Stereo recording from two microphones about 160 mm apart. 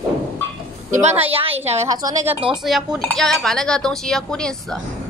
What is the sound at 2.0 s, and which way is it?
Speech, 25° right (ahead or behind).